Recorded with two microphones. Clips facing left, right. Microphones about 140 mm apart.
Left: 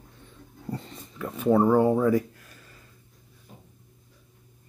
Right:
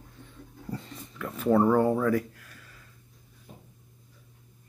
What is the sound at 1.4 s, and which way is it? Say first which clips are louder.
Speech: left 2 dB; 5° left (ahead or behind).